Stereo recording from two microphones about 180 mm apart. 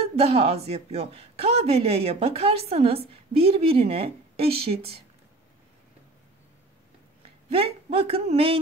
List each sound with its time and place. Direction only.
0.1 s speech: 35° right (ahead or behind)
7.5 s speech: 30° right (ahead or behind)